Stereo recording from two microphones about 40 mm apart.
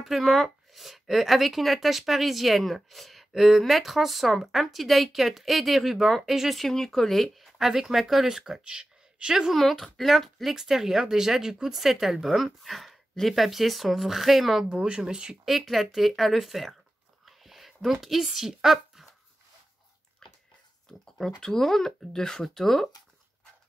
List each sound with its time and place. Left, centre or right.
0.0 s a woman's voice: centre
6.7 s speech: centre
7.5 s speech: centre
9.5 s a woman's voice: centre
14.8 s speech: right
15.4 s a woman's voice: centre
17.4 s a sound: centre
18.0 s a woman's voice: centre
21.4 s speech: centre